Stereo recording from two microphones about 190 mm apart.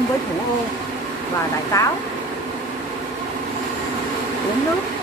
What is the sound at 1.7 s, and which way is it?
Speech, 15° left (ahead or behind).